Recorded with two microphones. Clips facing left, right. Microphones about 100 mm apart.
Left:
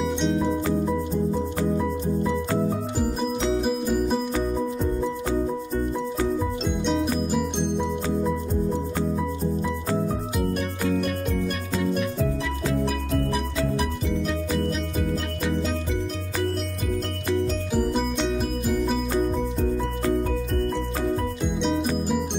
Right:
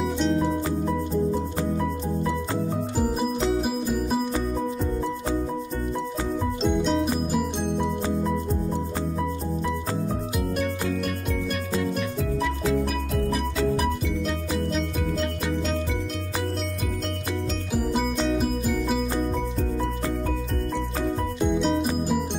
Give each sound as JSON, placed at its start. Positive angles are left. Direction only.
{"t": 0.0, "sound": "music", "side_deg": 0}
{"t": 3.3, "sound": "music", "side_deg": -5}
{"t": 6.6, "sound": "music", "side_deg": 0}
{"t": 17.7, "sound": "music", "side_deg": 0}
{"t": 21.5, "sound": "music", "side_deg": 0}